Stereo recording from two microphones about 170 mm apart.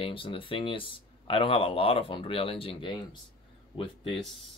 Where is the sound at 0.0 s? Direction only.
30° left (ahead or behind).